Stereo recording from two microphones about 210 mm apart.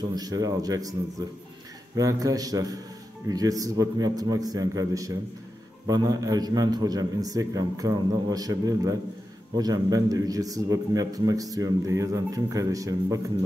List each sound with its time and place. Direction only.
0.1 s a man's voice: 20° right (ahead or behind)
2.0 s a man's voice: 15° right (ahead or behind)